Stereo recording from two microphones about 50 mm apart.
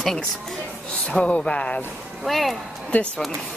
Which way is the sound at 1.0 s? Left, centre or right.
Left.